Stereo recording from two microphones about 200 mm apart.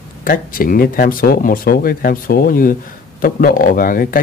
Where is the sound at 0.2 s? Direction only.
45° left (ahead or behind).